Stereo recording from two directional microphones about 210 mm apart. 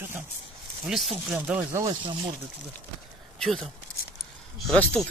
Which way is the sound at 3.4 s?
5° left (ahead or behind).